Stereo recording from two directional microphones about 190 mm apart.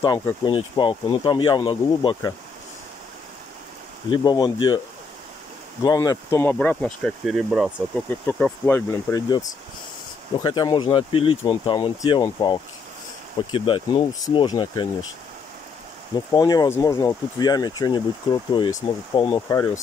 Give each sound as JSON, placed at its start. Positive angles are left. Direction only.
{"t": 0.0, "sound": "speech", "side_deg": 20}
{"t": 4.1, "sound": "speech", "side_deg": 20}
{"t": 5.9, "sound": "speech", "side_deg": 20}
{"t": 8.6, "sound": "speech", "side_deg": 15}
{"t": 16.3, "sound": "speech", "side_deg": 20}